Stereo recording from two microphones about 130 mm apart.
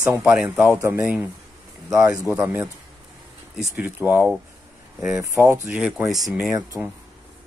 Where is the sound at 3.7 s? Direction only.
10° right (ahead or behind).